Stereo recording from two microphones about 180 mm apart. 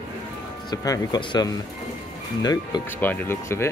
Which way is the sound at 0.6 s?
20° left (ahead or behind).